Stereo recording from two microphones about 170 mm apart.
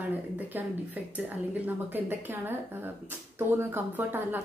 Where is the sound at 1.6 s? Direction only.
10° right (ahead or behind).